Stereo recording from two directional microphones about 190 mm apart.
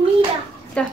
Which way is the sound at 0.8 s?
5° left (ahead or behind).